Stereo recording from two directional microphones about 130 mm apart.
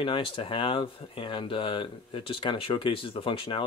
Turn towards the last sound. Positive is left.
turn(degrees=45)  # may be behind; listen again after turning